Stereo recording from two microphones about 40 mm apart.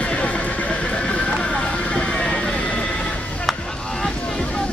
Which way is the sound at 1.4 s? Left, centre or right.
Left.